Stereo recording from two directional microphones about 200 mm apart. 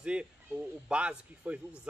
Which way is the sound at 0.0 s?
5° right (ahead or behind).